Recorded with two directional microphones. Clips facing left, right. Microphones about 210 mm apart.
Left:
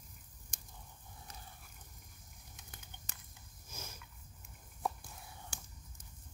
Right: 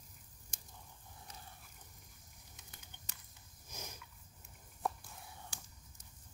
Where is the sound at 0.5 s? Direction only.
50° left (ahead or behind).